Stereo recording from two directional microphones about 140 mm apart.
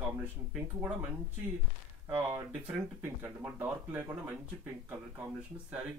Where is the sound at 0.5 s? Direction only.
10° right (ahead or behind).